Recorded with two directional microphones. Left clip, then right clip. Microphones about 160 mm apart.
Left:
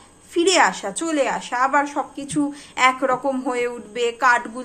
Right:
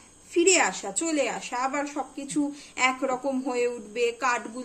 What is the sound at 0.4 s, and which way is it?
A woman's voice, 15° right (ahead or behind).